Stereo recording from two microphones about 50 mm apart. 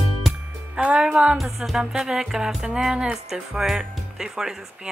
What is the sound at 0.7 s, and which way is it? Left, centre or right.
Speech, right.